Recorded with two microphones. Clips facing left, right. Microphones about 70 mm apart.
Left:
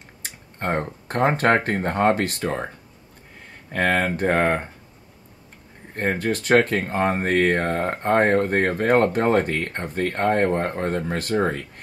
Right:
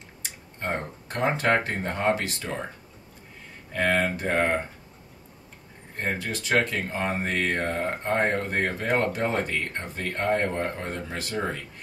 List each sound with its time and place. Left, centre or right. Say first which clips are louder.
0.2 s speech: left 4 dB; left
3.7 s speech: left 3 dB; left
5.9 s speech: left 6 dB; left